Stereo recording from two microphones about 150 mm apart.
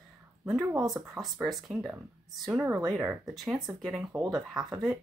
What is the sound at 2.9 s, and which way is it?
Speech, 5° right (ahead or behind).